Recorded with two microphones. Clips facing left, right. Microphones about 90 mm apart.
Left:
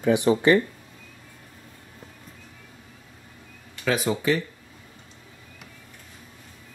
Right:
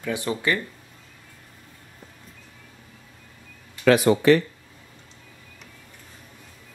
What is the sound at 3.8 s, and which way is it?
Speech, 65° right (ahead or behind).